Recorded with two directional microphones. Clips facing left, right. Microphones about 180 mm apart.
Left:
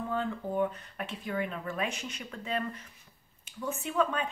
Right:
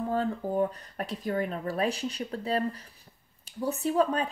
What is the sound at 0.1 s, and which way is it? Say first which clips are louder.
Speech: right 3 dB; 35° right (ahead or behind).